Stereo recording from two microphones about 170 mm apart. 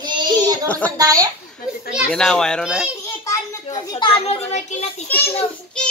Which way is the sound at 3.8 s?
30° left (ahead or behind).